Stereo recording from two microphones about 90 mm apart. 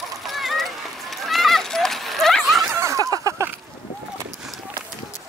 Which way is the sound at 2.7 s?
35° right (ahead or behind).